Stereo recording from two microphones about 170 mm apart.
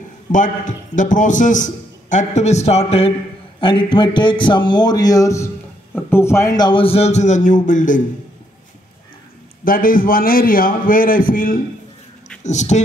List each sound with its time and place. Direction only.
0.3 s a man's voice: 50° left (ahead or behind)
9.7 s a man's voice: 55° left (ahead or behind)
12.4 s a man's voice: 45° left (ahead or behind)